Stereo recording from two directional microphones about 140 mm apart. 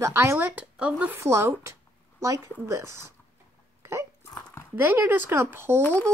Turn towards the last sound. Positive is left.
turn(degrees=-15)  # may be behind; listen again after turning